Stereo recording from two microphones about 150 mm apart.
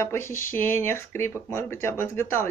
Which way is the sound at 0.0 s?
15° left (ahead or behind).